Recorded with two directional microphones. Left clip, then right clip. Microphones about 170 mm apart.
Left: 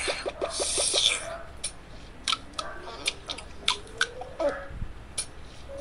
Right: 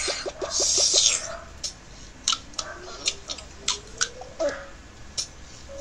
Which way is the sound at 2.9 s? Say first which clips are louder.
Right 3 dB; 20° left (ahead or behind).